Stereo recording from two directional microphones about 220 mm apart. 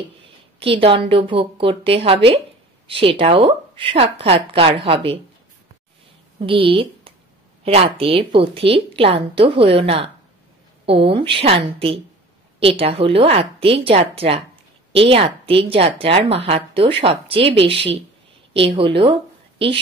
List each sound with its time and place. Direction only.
0.6 s a woman's voice: 25° right (ahead or behind)
6.4 s a woman's voice: 25° right (ahead or behind)